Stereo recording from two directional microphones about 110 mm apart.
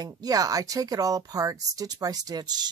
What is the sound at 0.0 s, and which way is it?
Speech, 35° right (ahead or behind).